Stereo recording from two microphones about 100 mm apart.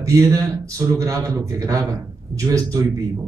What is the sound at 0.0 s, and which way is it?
A man's voice, 35° right (ahead or behind).